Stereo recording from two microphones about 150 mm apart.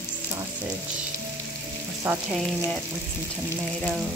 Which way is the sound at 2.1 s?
10° right (ahead or behind).